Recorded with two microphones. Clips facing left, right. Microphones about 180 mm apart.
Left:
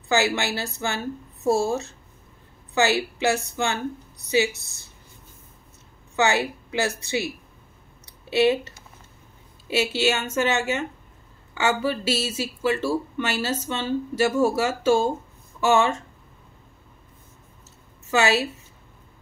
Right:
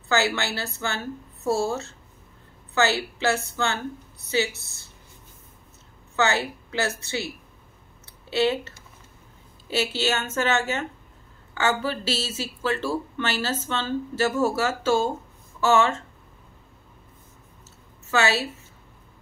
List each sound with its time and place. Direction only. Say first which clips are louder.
0.1 s speech: left 2 dB; 15° left (ahead or behind)
6.1 s speech: left 2 dB; 15° left (ahead or behind)
8.0 s a sound: left 3 dB; 15° left (ahead or behind)
9.7 s speech: left 3 dB; 10° left (ahead or behind)
18.1 s speech: left 2 dB; 15° left (ahead or behind)